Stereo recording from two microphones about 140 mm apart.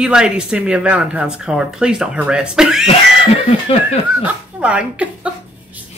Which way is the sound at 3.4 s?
45° left (ahead or behind).